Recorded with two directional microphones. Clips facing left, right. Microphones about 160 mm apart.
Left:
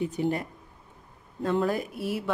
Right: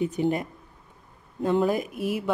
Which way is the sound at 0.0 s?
20° right (ahead or behind).